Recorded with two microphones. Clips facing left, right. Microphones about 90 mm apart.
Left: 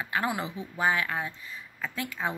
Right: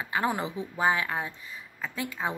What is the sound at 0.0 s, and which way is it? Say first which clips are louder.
Speech: right 1 dB; 25° right (ahead or behind).